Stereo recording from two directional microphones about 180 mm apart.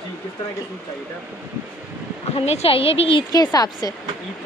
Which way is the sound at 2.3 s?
35° left (ahead or behind).